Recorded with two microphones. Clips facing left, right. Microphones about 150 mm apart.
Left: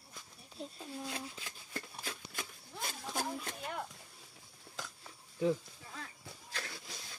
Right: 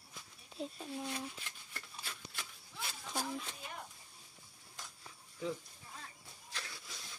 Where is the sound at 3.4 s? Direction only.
70° left (ahead or behind).